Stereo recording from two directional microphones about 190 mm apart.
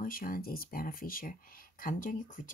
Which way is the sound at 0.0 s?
45° left (ahead or behind).